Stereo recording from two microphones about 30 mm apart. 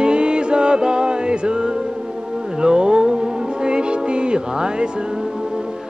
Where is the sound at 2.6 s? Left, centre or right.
Right.